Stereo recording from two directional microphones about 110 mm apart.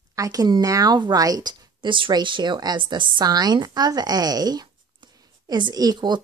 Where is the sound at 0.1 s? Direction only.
35° right (ahead or behind).